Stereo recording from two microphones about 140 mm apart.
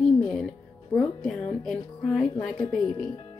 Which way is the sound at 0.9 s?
5° left (ahead or behind).